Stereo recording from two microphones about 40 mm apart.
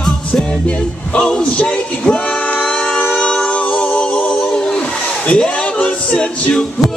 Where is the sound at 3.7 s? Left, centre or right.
Left.